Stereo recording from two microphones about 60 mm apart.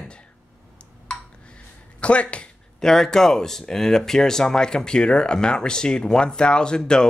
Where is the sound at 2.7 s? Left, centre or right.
Centre.